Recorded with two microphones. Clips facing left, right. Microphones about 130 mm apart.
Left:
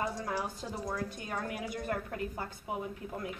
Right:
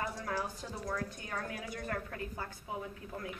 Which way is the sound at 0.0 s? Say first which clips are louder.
Left 4 dB; 25° left (ahead or behind).